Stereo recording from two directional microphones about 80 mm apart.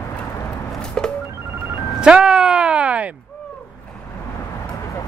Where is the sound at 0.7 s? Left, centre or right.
Centre.